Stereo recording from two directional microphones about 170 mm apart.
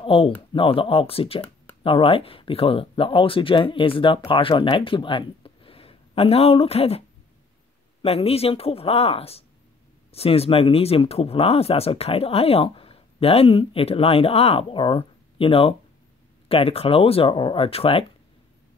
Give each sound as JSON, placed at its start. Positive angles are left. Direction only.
{"t": 0.0, "sound": "speech", "side_deg": 30}